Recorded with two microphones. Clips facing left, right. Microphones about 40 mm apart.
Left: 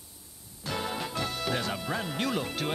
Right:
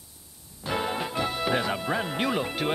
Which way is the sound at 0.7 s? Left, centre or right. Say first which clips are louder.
Right 4 dB; right.